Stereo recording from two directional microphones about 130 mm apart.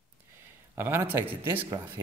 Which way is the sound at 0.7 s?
20° right (ahead or behind).